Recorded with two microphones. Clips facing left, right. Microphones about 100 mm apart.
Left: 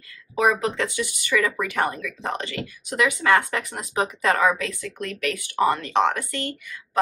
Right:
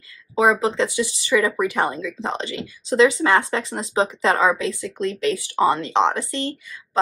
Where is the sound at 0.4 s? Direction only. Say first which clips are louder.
Right 3 dB; 20° right (ahead or behind).